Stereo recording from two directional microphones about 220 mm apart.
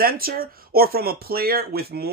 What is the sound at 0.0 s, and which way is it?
Speech, 45° right (ahead or behind).